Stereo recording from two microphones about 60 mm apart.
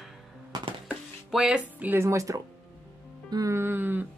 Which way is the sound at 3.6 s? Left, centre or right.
Right.